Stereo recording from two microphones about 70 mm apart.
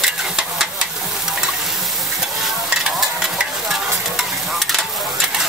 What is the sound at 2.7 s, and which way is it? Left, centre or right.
Stir, centre.